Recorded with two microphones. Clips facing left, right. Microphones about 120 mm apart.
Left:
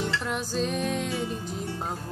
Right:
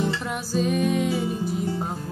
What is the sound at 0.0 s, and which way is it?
Music, 5° right (ahead or behind).